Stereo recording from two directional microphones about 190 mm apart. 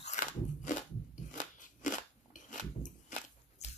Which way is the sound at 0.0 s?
40° left (ahead or behind).